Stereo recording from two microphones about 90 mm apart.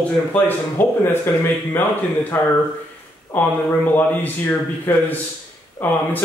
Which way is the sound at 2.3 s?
20° left (ahead or behind).